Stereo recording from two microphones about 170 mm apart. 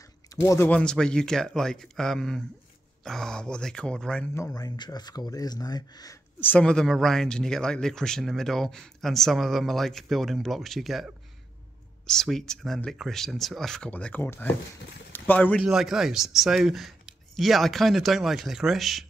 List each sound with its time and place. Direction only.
0.4 s speech: 15° left (ahead or behind)
6.4 s speech: 5° left (ahead or behind)
12.1 s speech: 5° left (ahead or behind)
15.6 s speech: 5° right (ahead or behind)